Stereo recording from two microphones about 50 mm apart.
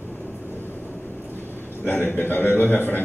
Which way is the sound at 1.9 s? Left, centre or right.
Left.